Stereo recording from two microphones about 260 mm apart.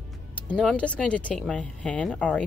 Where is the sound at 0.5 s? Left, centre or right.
Centre.